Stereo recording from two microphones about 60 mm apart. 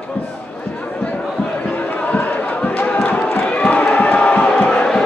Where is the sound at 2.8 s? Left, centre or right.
Left.